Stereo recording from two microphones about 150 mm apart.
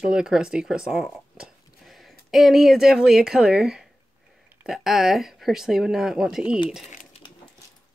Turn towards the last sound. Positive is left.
turn(degrees=-5)  # may be behind; listen again after turning